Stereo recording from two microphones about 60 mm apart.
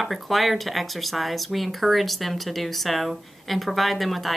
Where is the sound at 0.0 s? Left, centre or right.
Centre.